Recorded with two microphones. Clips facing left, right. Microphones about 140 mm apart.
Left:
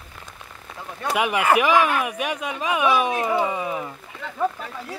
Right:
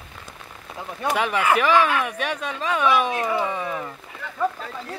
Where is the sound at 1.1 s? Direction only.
10° left (ahead or behind).